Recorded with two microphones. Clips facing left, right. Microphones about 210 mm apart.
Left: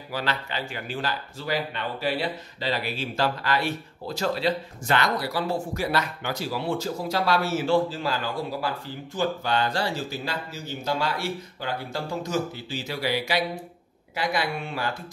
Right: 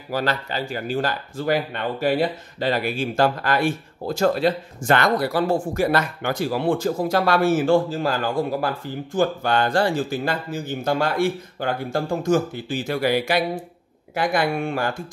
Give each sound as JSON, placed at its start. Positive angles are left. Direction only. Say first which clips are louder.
{"t": 0.1, "sound": "speech", "louder": "right 6 dB", "side_deg": -45}